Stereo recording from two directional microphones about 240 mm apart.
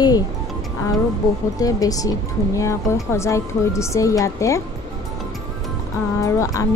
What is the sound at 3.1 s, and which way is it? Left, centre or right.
Speech, centre.